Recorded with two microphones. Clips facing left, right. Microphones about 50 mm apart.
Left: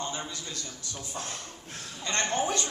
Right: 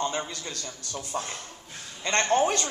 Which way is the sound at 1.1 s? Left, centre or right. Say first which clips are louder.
Right 6 dB; right.